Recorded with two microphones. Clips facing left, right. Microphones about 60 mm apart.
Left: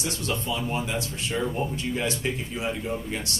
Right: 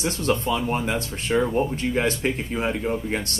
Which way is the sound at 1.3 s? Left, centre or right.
Right.